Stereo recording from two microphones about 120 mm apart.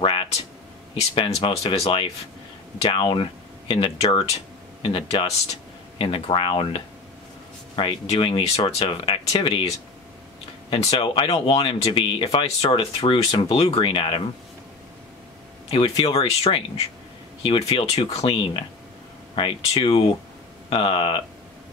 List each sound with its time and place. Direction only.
1.1 s speech: 45° left (ahead or behind)
2.8 s speech: 45° left (ahead or behind)
10.7 s speech: 50° left (ahead or behind)
15.7 s speech: 50° left (ahead or behind)